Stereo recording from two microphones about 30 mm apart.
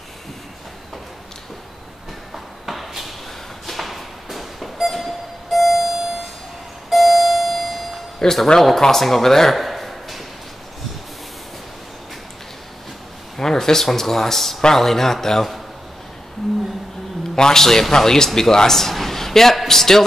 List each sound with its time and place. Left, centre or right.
2.3 s a sound: centre
5.9 s a sound: centre
6.9 s alarm clock: centre
8.2 s a man's voice: centre
13.4 s a man's voice: centre
17.4 s a man's voice: centre